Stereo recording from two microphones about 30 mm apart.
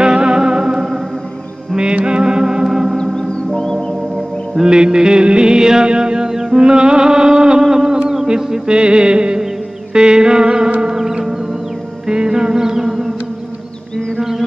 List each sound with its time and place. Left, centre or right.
0.0 s music: right
2.0 s music: right
2.6 s music: centre
3.5 s music: left
4.6 s music: right
11.0 s music: centre